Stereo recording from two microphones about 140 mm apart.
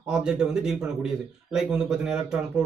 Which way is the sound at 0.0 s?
5° right (ahead or behind).